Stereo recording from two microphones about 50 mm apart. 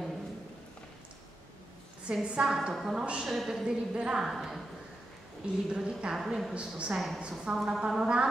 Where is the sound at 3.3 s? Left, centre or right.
Centre.